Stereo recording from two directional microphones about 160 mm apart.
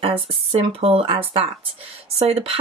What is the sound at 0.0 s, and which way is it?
Speech, 35° right (ahead or behind).